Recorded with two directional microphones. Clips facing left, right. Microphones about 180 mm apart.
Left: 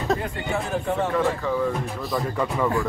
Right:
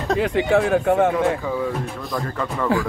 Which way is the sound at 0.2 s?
90° right.